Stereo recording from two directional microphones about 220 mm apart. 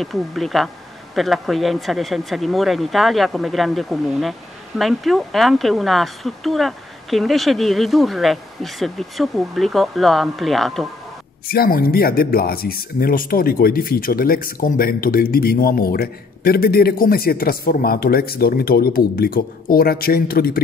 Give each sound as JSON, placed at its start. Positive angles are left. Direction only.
{"t": 0.0, "sound": "speech", "side_deg": 0}
{"t": 11.4, "sound": "speech", "side_deg": 40}